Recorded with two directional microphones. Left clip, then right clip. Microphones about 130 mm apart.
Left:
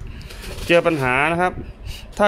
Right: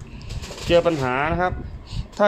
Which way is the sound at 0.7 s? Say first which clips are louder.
Left 2 dB; 15° left (ahead or behind).